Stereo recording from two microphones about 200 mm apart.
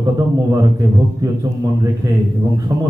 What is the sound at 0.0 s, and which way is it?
A man's voice, 15° right (ahead or behind).